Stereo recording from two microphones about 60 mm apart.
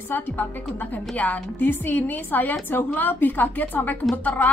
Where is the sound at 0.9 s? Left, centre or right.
Left.